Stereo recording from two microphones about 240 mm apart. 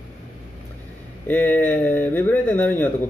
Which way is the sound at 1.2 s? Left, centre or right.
Centre.